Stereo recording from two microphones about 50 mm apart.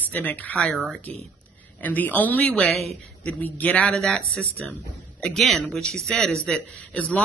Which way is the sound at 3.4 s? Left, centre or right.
Left.